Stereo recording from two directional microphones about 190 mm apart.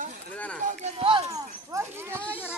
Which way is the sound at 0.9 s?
25° right (ahead or behind).